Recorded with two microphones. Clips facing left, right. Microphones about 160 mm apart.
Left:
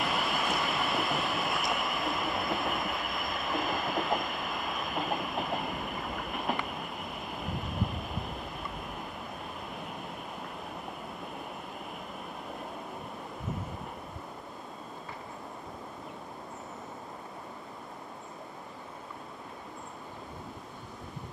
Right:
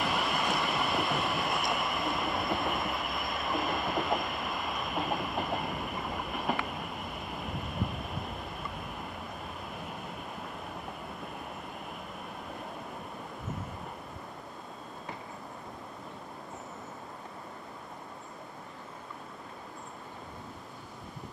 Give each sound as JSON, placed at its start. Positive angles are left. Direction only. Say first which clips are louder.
{"t": 0.0, "sound": "train", "louder": "even", "side_deg": 0}